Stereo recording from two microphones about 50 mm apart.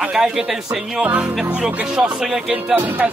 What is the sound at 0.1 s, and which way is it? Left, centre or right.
Speech, centre.